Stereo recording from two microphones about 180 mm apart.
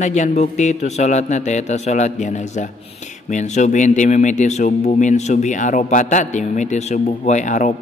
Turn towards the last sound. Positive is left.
turn(degrees=45)  # may be behind; listen again after turning